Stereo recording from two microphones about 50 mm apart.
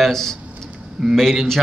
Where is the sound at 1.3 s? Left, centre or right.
Centre.